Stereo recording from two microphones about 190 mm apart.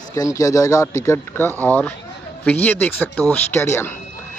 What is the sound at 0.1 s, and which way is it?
Speech, 15° left (ahead or behind).